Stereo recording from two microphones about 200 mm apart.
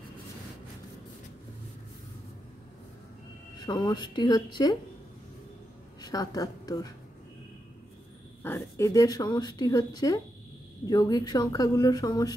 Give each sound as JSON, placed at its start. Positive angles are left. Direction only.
{"t": 3.5, "sound": "speech", "side_deg": 20}
{"t": 5.9, "sound": "a woman's voice", "side_deg": 20}
{"t": 8.4, "sound": "speech", "side_deg": 10}